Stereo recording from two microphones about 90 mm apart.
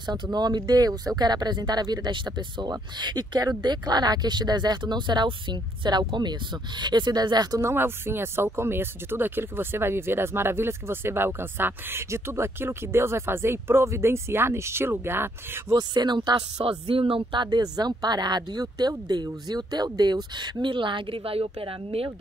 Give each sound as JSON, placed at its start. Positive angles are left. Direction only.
{"t": 0.0, "sound": "speech", "side_deg": -50}
{"t": 7.6, "sound": "speech", "side_deg": -25}
{"t": 15.7, "sound": "speech", "side_deg": -50}
{"t": 16.6, "sound": "speech", "side_deg": -90}